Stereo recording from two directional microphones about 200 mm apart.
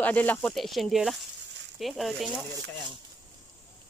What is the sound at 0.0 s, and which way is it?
Speech, 10° left (ahead or behind).